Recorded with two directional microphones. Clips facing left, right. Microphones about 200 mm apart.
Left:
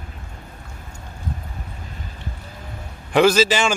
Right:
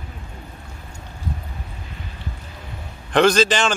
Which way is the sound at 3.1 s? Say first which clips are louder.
Left 1 dB; 5° left (ahead or behind).